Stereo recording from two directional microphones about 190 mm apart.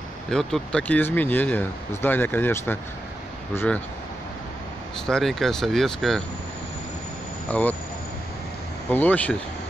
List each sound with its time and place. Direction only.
0.3 s speech: 5° left (ahead or behind)
5.0 s speech: centre (ahead or behind)
7.5 s speech: 10° left (ahead or behind)
8.9 s speech: 10° left (ahead or behind)